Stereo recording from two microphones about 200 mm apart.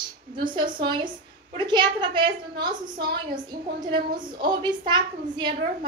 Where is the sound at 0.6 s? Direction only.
25° right (ahead or behind).